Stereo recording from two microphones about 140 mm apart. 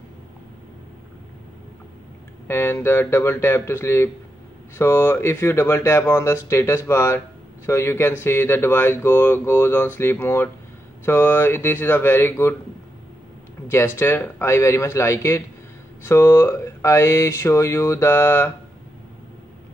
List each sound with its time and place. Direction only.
2.4 s speech: 15° left (ahead or behind)
13.7 s speech: 15° left (ahead or behind)